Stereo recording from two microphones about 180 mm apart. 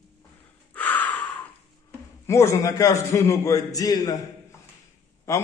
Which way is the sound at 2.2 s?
15° left (ahead or behind).